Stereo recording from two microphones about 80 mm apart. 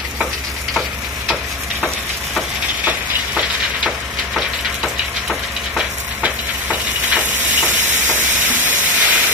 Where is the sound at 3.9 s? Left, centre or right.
Centre.